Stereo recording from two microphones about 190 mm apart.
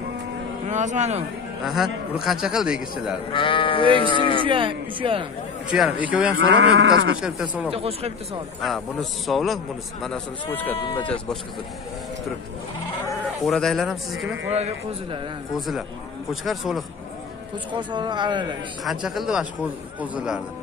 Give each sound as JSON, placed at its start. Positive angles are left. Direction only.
{"t": 0.7, "sound": "speech", "side_deg": -40}
{"t": 1.7, "sound": "a man's voice", "side_deg": 0}
{"t": 3.3, "sound": "speech", "side_deg": 25}
{"t": 4.5, "sound": "speech", "side_deg": -25}
{"t": 5.7, "sound": "a man's voice", "side_deg": -5}
{"t": 6.3, "sound": "speech", "side_deg": -85}
{"t": 7.2, "sound": "a man's voice", "side_deg": -5}
{"t": 7.7, "sound": "speech", "side_deg": -30}
{"t": 8.5, "sound": "a man's voice", "side_deg": 0}
{"t": 10.8, "sound": "speech", "side_deg": 25}
{"t": 13.4, "sound": "a man's voice", "side_deg": 0}
{"t": 16.4, "sound": "a man's voice", "side_deg": 0}
{"t": 17.7, "sound": "speech", "side_deg": -25}
{"t": 18.9, "sound": "a man's voice", "side_deg": 0}